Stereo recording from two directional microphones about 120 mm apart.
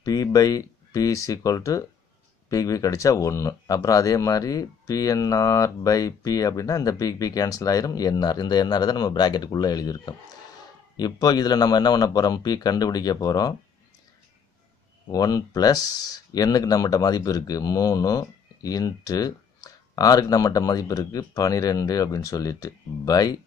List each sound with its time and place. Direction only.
0.0 s speech: 30° left (ahead or behind)
15.0 s speech: 30° left (ahead or behind)